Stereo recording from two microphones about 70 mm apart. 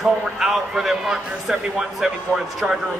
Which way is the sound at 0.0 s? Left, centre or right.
Centre.